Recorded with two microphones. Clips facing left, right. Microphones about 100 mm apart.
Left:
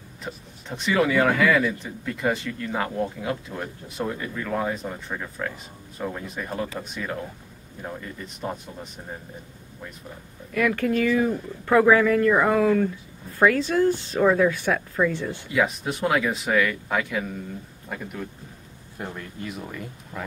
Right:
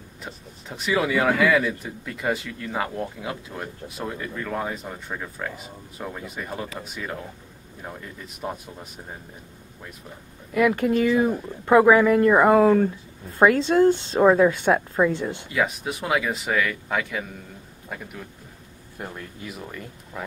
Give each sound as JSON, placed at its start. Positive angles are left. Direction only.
{"t": 0.2, "sound": "a man's voice", "side_deg": -5}
{"t": 10.5, "sound": "speech", "side_deg": -20}
{"t": 13.4, "sound": "speech", "side_deg": -25}
{"t": 15.5, "sound": "a man's voice", "side_deg": 0}
{"t": 18.9, "sound": "a man's voice", "side_deg": 0}